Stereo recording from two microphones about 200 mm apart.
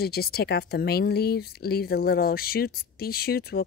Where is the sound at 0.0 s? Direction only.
50° left (ahead or behind).